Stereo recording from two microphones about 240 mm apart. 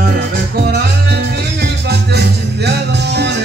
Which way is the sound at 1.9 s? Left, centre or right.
Right.